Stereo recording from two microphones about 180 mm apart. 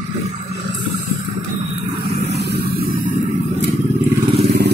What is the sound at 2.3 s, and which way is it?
Vehicle, 65° right (ahead or behind).